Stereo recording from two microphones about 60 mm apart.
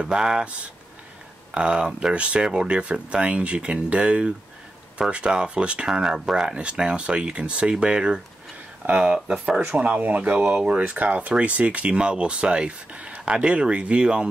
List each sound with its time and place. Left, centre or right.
0.0 s speech: centre
1.5 s speech: centre
5.9 s speech: centre; by 10.4 s right
10.4 s speech: centre
10.8 s speech: right